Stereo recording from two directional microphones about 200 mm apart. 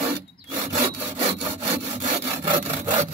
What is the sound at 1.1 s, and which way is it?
Sawing, 25° right (ahead or behind).